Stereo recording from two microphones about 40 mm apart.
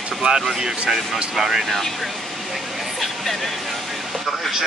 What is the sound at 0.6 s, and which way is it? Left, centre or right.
Speech, centre.